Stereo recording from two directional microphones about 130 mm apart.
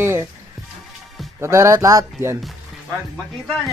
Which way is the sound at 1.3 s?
20° right (ahead or behind).